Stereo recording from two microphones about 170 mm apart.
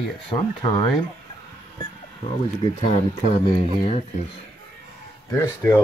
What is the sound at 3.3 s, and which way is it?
Speech, 30° left (ahead or behind).